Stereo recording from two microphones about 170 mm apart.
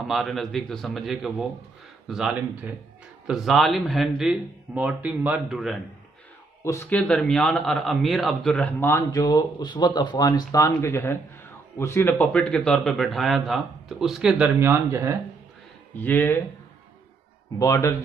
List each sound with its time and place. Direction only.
0.0 s a man's voice: centre (ahead or behind)
6.6 s a man's voice: 15° left (ahead or behind); by 15.1 s 15° right (ahead or behind)
16.0 s a man's voice: 10° left (ahead or behind)
17.6 s speech: 20° left (ahead or behind)